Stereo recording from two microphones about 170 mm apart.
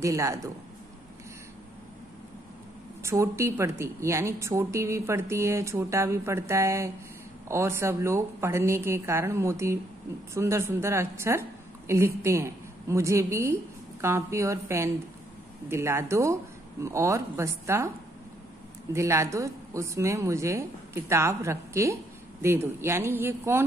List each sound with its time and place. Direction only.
0.0 s a woman's voice: 20° right (ahead or behind)
3.0 s a woman's voice: 15° right (ahead or behind)
18.9 s a woman's voice: 15° right (ahead or behind)